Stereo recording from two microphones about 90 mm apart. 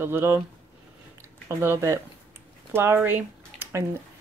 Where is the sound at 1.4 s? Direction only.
30° right (ahead or behind).